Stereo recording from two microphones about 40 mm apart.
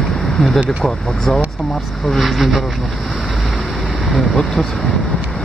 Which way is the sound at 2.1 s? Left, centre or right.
Centre.